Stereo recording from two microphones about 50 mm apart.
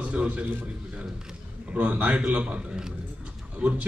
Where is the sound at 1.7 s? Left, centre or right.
Right.